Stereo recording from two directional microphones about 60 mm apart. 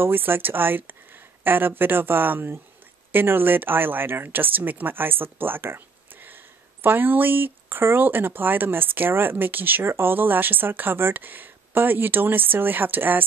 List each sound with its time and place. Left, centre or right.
0.0 s speech: right